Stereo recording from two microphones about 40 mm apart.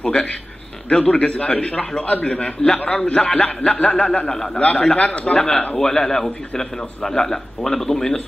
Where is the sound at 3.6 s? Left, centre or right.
Left.